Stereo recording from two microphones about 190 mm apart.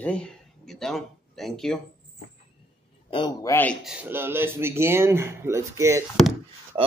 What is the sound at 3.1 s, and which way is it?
Speech, 25° left (ahead or behind).